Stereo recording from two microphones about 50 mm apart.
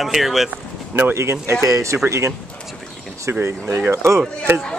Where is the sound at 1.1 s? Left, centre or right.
Right.